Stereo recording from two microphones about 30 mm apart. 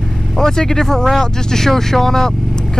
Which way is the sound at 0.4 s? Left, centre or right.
Centre.